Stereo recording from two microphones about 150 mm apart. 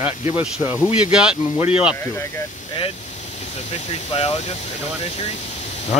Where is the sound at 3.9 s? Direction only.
40° left (ahead or behind).